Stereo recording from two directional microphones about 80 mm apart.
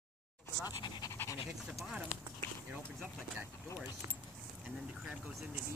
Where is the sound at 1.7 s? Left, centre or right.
Centre.